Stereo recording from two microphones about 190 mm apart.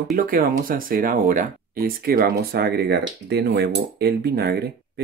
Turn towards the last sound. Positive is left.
turn(degrees=-55)  # may be behind; listen again after turning